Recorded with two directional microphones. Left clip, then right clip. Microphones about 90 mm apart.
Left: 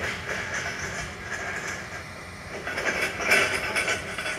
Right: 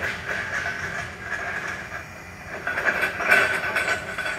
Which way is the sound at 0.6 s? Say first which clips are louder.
Right 3 dB; 65° right (ahead or behind).